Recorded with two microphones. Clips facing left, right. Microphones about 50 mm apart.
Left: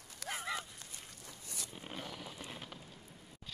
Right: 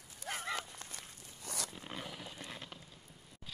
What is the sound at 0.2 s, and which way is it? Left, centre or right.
Dog, left.